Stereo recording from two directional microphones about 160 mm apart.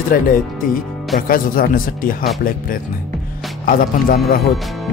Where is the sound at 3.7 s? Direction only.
65° left (ahead or behind).